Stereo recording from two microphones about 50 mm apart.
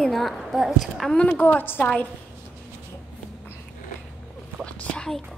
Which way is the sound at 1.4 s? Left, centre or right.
Left.